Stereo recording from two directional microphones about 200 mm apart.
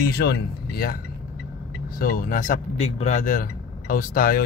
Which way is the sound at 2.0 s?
45° left (ahead or behind).